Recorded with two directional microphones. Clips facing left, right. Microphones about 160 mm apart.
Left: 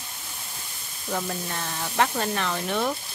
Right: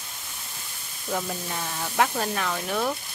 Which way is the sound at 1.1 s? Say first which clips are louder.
Even; 5° right (ahead or behind).